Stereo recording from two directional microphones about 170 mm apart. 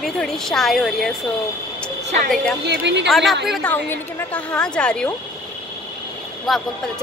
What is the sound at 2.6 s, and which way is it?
Speech, 80° right.